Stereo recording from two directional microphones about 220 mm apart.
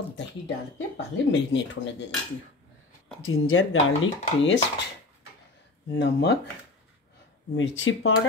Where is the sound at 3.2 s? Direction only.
70° left (ahead or behind).